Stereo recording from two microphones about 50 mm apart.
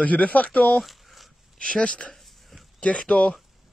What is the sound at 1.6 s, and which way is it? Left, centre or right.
Speech, centre.